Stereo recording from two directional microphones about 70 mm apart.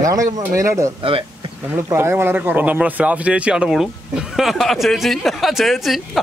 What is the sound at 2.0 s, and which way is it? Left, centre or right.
Speech, right.